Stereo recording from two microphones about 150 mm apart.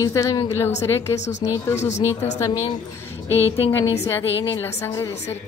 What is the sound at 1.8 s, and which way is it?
Speech, 50° left (ahead or behind).